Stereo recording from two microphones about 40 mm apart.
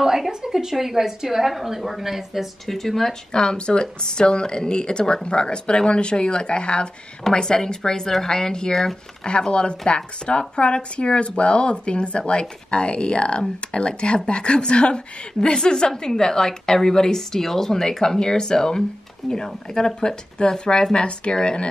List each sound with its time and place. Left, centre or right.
0.0 s a woman's voice: centre
3.3 s a woman's voice: left